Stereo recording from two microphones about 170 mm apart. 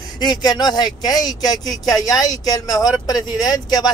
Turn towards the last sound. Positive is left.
turn(degrees=25)  # may be behind; listen again after turning